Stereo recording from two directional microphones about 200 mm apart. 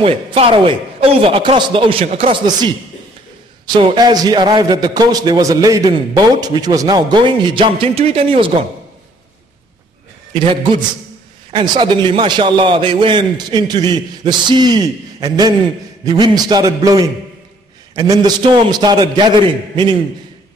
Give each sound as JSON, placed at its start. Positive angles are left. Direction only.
{"t": 0.0, "sound": "a man's voice", "side_deg": -25}
{"t": 10.3, "sound": "a man's voice", "side_deg": -25}